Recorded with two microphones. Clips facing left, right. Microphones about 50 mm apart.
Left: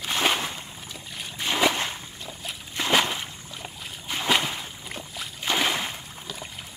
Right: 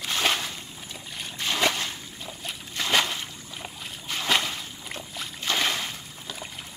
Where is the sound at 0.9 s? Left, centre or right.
Centre.